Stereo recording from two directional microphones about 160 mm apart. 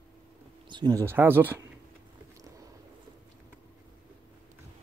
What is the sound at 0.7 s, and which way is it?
Speech, 25° right (ahead or behind).